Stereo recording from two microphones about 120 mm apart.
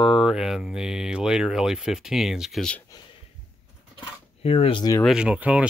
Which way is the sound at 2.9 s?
30° left (ahead or behind).